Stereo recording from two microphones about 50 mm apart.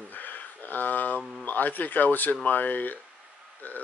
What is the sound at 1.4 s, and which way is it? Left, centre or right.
Speech, left.